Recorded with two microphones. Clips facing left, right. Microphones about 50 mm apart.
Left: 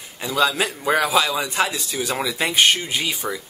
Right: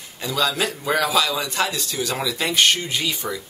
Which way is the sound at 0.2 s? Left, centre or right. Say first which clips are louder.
Left 2 dB; centre.